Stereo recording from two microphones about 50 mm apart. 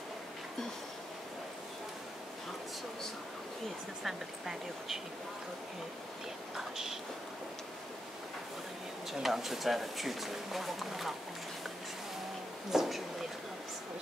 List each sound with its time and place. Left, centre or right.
4.0 s speech: centre
6.5 s speech: centre
9.2 s speech: centre
12.7 s speech: centre